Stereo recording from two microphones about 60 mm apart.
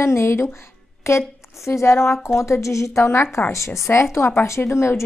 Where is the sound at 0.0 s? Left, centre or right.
Left.